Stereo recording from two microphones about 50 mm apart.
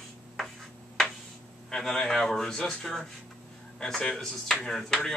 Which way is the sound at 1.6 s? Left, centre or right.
Centre.